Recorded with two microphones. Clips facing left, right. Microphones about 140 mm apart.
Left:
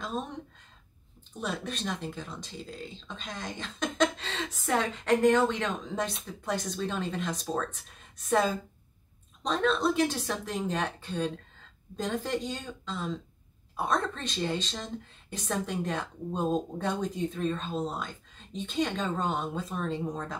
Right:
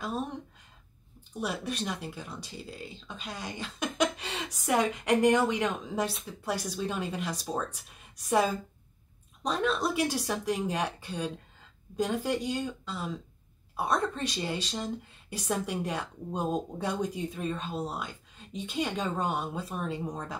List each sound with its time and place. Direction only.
1.3 s speech: 10° right (ahead or behind)